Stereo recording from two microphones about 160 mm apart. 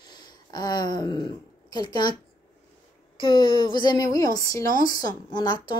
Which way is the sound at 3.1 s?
30° left (ahead or behind).